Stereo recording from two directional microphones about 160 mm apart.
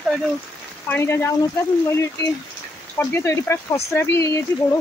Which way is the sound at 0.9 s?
15° left (ahead or behind).